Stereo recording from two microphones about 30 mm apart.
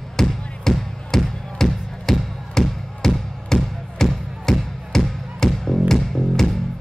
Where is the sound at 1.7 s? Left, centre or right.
Centre.